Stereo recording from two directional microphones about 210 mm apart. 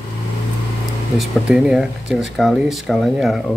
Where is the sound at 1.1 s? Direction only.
Centre (ahead or behind).